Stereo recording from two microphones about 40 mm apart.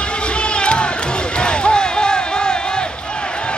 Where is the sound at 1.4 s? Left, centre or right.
Left.